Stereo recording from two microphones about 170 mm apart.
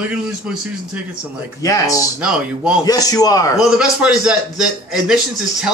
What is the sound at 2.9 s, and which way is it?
Speech, 20° left (ahead or behind).